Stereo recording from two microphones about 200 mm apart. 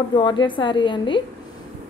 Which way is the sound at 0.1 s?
25° left (ahead or behind).